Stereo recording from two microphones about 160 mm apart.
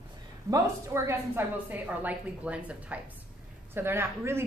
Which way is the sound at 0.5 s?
15° right (ahead or behind).